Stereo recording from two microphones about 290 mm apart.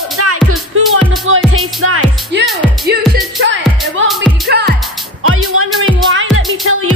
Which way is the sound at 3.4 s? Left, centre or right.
Right.